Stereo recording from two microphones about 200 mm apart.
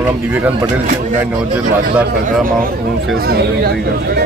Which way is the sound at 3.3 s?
50° right (ahead or behind).